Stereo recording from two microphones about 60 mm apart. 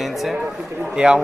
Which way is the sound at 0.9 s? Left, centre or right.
Centre.